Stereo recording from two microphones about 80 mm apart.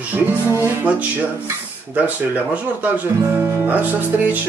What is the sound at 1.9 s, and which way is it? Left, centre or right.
Music, centre.